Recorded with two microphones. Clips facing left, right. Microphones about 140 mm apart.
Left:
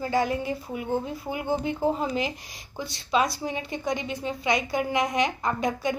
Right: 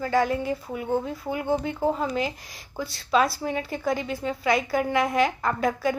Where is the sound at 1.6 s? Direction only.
20° left (ahead or behind).